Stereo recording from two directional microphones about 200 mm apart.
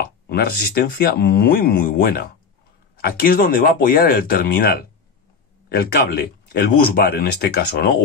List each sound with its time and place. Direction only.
0.0 s speech: 50° left (ahead or behind)